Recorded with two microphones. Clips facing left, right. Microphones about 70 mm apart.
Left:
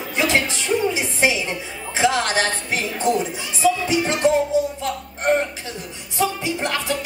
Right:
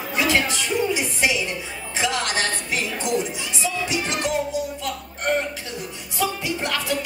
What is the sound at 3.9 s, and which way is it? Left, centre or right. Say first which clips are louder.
Music: left 6 dB; left.